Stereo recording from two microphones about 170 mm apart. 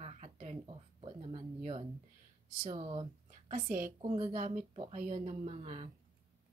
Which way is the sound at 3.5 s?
50° right (ahead or behind).